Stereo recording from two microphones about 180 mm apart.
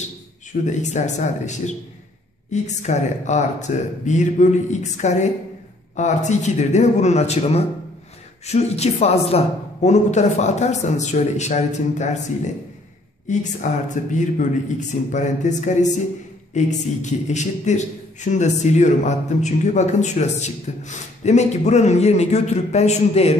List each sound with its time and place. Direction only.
0.7 s a man's voice: 40° left (ahead or behind)
13.3 s a man's voice: 45° left (ahead or behind)